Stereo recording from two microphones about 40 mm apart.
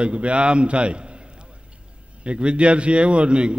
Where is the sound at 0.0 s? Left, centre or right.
Right.